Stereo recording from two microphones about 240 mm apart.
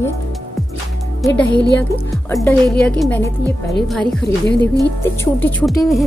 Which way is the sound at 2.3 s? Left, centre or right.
Centre.